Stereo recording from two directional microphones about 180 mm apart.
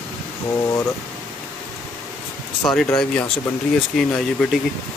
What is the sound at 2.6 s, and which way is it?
Speech, 5° left (ahead or behind).